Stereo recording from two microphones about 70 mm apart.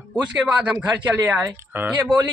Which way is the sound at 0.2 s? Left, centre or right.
Centre.